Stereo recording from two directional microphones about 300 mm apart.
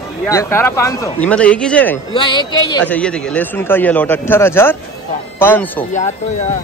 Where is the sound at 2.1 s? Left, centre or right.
Centre.